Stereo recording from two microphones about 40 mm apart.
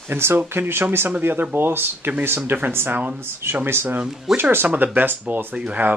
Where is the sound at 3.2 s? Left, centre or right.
Right.